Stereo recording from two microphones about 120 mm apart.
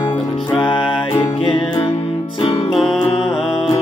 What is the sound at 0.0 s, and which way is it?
Music, 40° left (ahead or behind).